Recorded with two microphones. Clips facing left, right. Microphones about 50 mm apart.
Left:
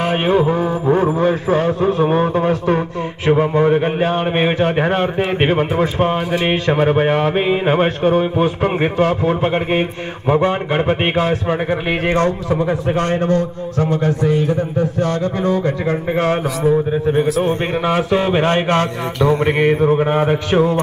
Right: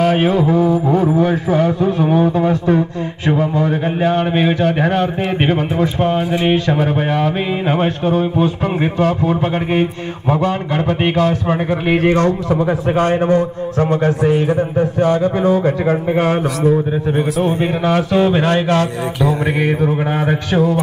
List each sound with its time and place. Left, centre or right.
0.0 s mantra: left
5.4 s a man's voice: left
5.8 s mantra: left
9.0 s a man's voice: centre
9.5 s mantra: left
10.2 s a man's voice: left
11.7 s speech: centre
12.1 s a man's voice: left
12.4 s a man's voice: centre
13.0 s a man's voice: centre
17.8 s mantra: left